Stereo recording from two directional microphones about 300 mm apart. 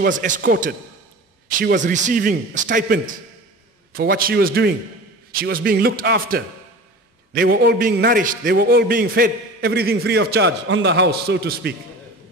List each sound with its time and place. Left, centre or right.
0.0 s a man's voice: right